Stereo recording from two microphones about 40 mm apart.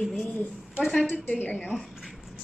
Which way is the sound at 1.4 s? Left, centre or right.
Left.